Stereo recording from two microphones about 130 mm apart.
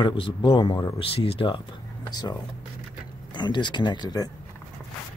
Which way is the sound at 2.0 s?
30° left (ahead or behind).